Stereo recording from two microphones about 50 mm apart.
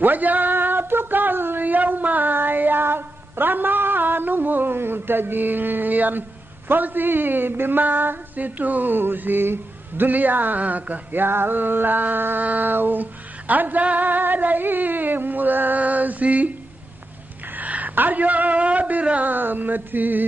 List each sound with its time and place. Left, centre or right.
0.0 s a sound: right
6.7 s speech: right
10.0 s female singing: right
17.6 s a man's voice: right
19.0 s female singing: right